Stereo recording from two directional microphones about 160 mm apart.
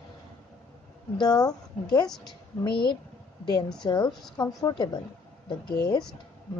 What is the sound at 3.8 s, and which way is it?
Speech, 25° left (ahead or behind).